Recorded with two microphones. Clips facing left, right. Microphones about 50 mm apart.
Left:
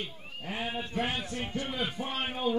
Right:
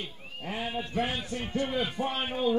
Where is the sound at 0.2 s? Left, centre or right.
Centre.